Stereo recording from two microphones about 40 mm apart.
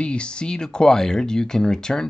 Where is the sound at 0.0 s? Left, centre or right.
Left.